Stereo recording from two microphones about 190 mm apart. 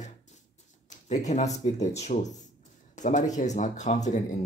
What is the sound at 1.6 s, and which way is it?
Speech, 35° left (ahead or behind).